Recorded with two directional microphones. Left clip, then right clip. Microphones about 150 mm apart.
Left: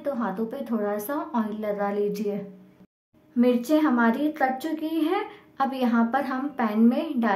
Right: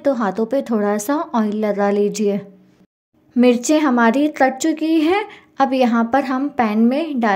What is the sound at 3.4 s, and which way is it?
A woman's voice, 50° right (ahead or behind).